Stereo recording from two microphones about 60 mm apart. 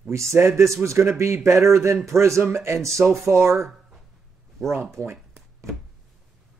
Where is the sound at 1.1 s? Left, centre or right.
Right.